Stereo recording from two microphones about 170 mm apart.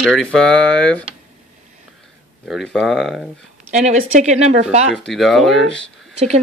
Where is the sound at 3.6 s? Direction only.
45° right (ahead or behind).